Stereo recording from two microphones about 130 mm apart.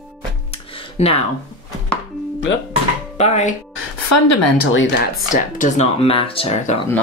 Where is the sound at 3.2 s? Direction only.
60° left (ahead or behind).